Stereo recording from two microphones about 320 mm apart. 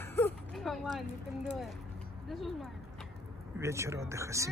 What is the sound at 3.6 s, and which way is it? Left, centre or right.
Speech, centre.